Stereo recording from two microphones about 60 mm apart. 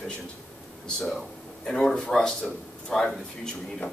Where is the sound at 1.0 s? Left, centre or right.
Centre.